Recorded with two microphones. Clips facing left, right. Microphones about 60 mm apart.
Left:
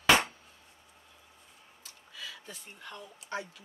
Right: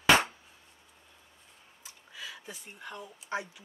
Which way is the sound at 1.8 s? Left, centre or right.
Centre.